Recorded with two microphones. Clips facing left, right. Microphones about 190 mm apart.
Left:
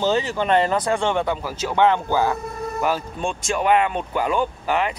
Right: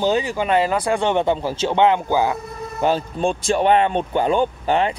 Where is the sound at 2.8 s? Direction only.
30° right (ahead or behind).